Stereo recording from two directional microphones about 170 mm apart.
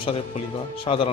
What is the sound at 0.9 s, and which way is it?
Speech, 35° left (ahead or behind).